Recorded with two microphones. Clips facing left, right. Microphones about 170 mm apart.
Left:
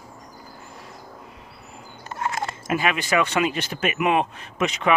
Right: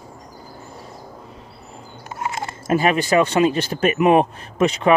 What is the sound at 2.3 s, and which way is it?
Speech, 35° right (ahead or behind).